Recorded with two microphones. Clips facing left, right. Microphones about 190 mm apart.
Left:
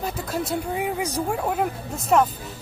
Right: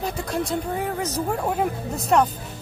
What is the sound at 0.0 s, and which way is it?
A woman's voice, centre (ahead or behind).